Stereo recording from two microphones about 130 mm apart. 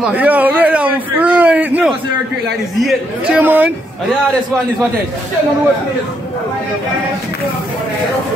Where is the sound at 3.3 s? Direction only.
10° right (ahead or behind).